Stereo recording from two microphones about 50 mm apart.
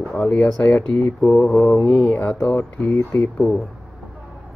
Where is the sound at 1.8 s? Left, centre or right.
Left.